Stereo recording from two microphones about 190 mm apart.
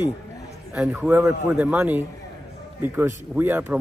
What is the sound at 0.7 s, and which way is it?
Speech, 5° right (ahead or behind).